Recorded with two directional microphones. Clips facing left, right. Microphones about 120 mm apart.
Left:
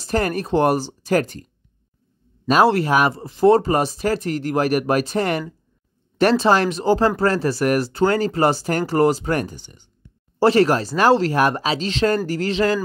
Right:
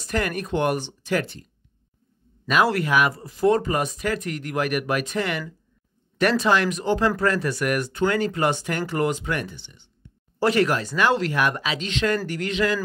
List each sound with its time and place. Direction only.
0.0 s speech: 35° left (ahead or behind)
2.4 s speech: 30° left (ahead or behind)
10.4 s speech: 35° left (ahead or behind)